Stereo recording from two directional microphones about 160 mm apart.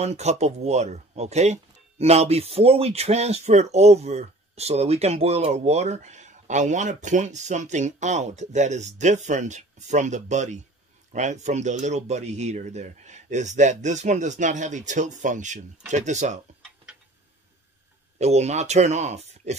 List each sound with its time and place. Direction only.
0.0 s speech: 45° right (ahead or behind)
18.2 s speech: 45° right (ahead or behind)